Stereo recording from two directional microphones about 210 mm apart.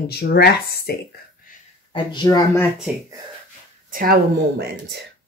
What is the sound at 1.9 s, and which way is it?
Speech, 20° left (ahead or behind).